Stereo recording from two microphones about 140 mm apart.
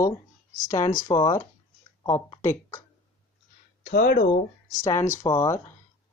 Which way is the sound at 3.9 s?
90° left.